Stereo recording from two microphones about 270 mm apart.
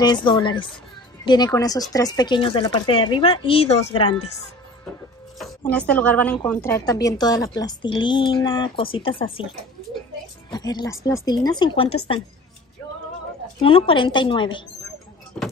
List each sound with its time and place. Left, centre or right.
0.0 s a woman's voice: centre
5.6 s a woman's voice: centre
10.5 s a woman's voice: centre
13.6 s a woman's voice: centre